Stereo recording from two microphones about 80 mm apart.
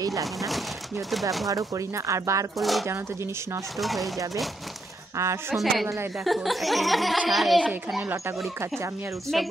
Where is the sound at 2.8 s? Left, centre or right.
Right.